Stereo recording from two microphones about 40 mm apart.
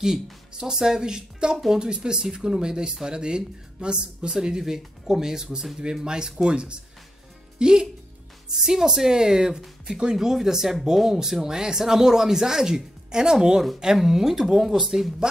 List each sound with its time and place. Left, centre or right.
0.0 s speech: centre